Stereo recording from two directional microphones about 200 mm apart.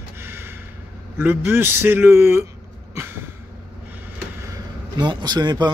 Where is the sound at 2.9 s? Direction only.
10° right (ahead or behind).